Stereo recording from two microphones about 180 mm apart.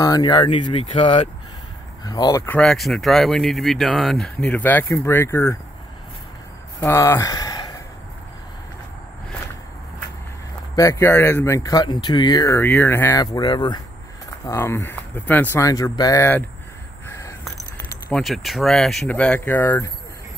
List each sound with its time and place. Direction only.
0.0 s speech: 20° left (ahead or behind)
2.4 s speech: 5° left (ahead or behind)
6.8 s speech: 15° left (ahead or behind)
10.8 s speech: 15° left (ahead or behind)
18.1 s speech: centre (ahead or behind)